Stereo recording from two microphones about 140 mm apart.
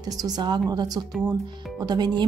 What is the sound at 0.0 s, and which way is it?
Speech, 25° right (ahead or behind).